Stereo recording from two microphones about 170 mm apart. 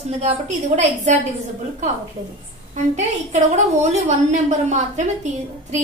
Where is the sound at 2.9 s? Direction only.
40° right (ahead or behind).